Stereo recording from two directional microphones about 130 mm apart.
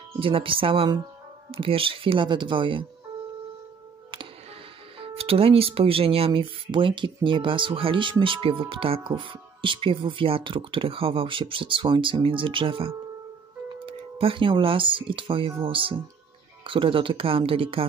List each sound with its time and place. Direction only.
0.2 s speech: 45° right (ahead or behind)
4.9 s speech: 45° right (ahead or behind)